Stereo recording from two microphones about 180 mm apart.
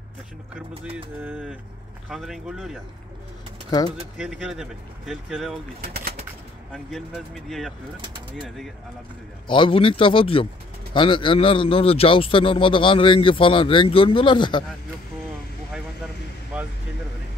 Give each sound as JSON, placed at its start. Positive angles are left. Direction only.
{"t": 0.8, "sound": "a sound", "side_deg": -10}
{"t": 2.0, "sound": "speech", "side_deg": 0}
{"t": 4.2, "sound": "speech", "side_deg": -5}
{"t": 6.7, "sound": "speech", "side_deg": 0}
{"t": 9.5, "sound": "speech", "side_deg": 30}